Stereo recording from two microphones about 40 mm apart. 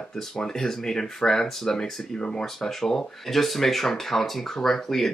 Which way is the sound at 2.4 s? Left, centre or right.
Centre.